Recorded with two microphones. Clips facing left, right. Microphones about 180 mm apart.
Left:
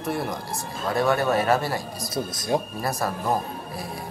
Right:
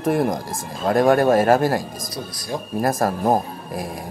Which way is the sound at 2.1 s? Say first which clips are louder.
Left 5 dB; 25° left (ahead or behind).